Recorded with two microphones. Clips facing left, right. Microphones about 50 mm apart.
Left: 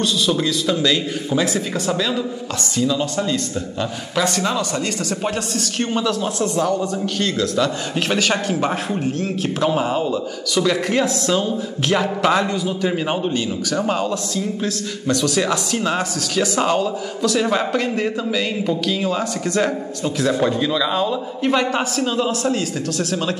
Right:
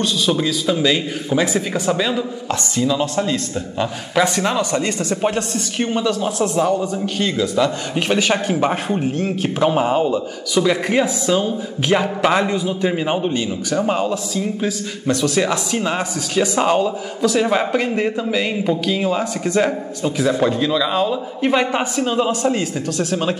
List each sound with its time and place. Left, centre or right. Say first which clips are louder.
0.0 s a man's voice: right 1 dB; centre
5.8 s a man's voice: right 2 dB; centre
12.9 s a man's voice: right 2 dB; centre
13.3 s a man's voice: right 1 dB; right
13.7 s a man's voice: right 2 dB; centre